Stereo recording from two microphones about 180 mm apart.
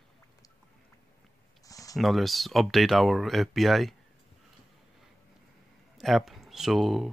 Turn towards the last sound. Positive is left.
turn(degrees=0)  # may be behind; listen again after turning